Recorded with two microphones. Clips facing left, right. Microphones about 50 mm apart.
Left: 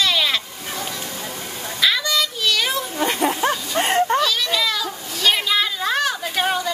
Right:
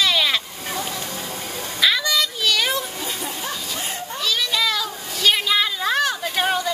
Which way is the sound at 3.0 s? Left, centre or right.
Left.